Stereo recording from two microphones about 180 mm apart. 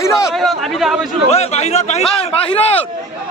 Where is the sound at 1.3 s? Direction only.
35° left (ahead or behind).